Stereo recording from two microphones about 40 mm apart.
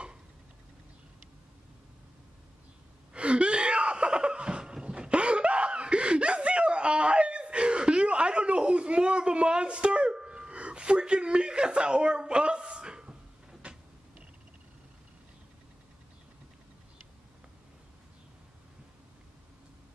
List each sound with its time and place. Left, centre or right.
3.1 s gasp: right